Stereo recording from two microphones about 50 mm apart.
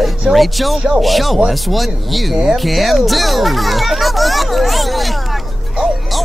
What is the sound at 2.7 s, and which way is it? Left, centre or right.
Speech, centre.